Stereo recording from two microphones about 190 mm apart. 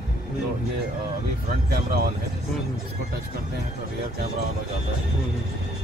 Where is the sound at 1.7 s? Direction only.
55° right (ahead or behind).